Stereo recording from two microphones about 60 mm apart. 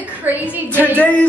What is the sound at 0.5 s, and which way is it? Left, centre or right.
Speech, right.